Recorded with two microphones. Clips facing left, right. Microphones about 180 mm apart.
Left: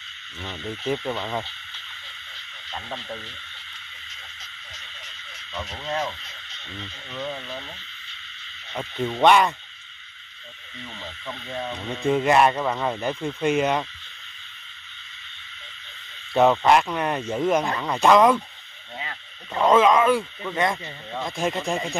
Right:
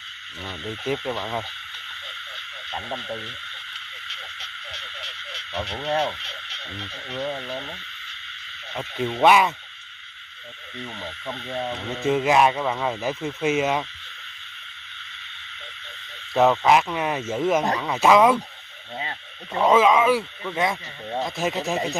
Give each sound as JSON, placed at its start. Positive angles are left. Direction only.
{"t": 0.4, "sound": "speech", "side_deg": -5}
{"t": 4.1, "sound": "a sound", "side_deg": -65}
{"t": 5.8, "sound": "speech", "side_deg": -30}
{"t": 6.2, "sound": "frog", "side_deg": -70}
{"t": 7.2, "sound": "speech", "side_deg": -25}
{"t": 8.7, "sound": "speech", "side_deg": -5}
{"t": 11.0, "sound": "speech", "side_deg": -25}
{"t": 11.9, "sound": "speech", "side_deg": -5}
{"t": 16.3, "sound": "speech", "side_deg": 0}
{"t": 19.5, "sound": "speech", "side_deg": -5}